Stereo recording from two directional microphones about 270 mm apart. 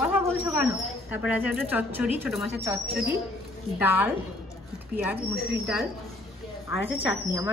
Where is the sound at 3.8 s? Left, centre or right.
Centre.